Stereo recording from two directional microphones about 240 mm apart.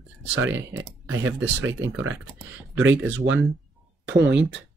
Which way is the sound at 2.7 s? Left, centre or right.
Right.